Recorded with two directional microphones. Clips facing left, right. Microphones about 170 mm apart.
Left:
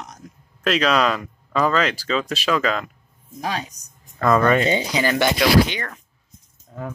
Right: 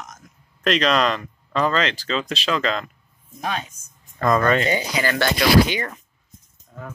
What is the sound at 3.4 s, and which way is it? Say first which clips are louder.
Speech: left 1 dB; 35° left (ahead or behind).